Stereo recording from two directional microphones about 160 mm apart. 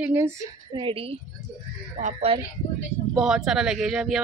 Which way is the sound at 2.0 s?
50° right (ahead or behind).